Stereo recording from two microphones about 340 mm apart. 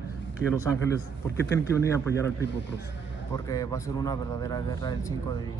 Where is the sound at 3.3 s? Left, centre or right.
Centre.